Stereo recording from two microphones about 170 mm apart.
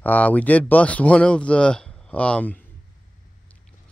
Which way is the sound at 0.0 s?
10° left (ahead or behind).